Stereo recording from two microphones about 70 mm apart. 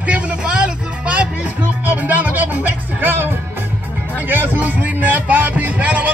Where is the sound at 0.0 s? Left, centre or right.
Centre.